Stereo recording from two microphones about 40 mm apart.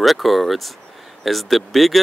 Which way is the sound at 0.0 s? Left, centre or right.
Centre.